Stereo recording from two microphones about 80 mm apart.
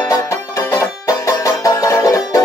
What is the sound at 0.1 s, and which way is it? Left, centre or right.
Music, left.